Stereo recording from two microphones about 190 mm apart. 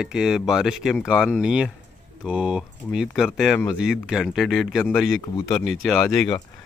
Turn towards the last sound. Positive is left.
turn(degrees=5)  # may be behind; listen again after turning